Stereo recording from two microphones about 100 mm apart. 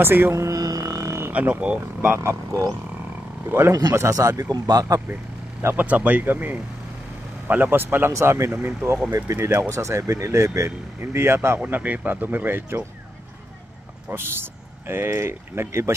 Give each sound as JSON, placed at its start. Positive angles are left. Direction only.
{"t": 0.0, "sound": "a sound", "side_deg": -25}
{"t": 1.3, "sound": "speech", "side_deg": -15}
{"t": 3.9, "sound": "speech", "side_deg": -30}
{"t": 5.6, "sound": "speech", "side_deg": -20}
{"t": 14.0, "sound": "speech", "side_deg": -25}